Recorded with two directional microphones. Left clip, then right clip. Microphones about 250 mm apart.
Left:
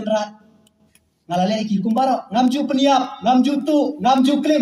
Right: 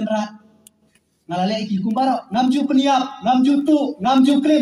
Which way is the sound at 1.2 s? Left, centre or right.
Left.